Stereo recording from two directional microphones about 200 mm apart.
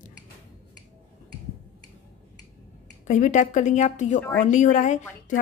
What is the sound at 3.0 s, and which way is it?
A woman's voice, 40° left (ahead or behind).